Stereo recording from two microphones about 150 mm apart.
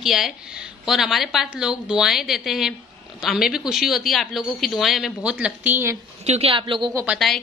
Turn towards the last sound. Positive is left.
turn(degrees=0)  # may be behind; listen again after turning